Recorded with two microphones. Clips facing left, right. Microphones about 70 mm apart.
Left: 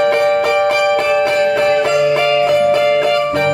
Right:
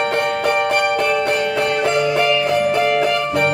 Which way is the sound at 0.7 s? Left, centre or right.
Left.